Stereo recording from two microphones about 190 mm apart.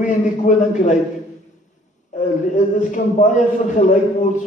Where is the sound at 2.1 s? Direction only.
40° left (ahead or behind).